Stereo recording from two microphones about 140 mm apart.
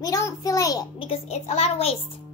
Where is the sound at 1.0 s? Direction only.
45° left (ahead or behind).